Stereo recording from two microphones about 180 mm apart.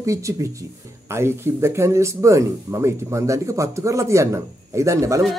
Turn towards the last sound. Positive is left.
turn(degrees=-15)  # may be behind; listen again after turning